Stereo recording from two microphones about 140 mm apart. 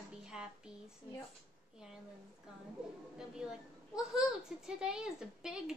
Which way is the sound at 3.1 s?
5° right (ahead or behind).